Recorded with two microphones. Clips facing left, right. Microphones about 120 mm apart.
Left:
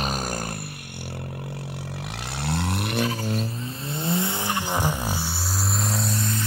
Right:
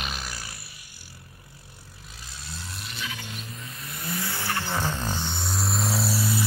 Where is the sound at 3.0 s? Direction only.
40° left (ahead or behind).